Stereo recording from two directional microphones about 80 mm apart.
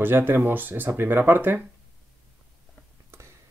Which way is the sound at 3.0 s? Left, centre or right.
Right.